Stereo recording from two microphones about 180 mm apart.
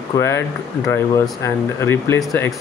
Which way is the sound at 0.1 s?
15° left (ahead or behind).